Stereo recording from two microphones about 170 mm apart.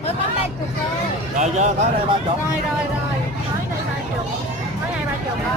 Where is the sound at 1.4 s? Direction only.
45° right (ahead or behind).